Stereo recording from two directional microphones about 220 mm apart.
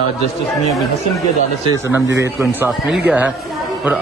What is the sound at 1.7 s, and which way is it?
A man's voice, 10° right (ahead or behind).